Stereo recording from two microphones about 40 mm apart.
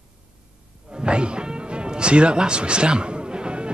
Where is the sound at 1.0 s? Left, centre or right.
Right.